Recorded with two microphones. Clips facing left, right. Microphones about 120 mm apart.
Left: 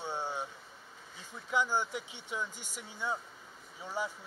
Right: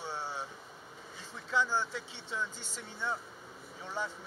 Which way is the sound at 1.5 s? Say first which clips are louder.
Even; 15° left (ahead or behind).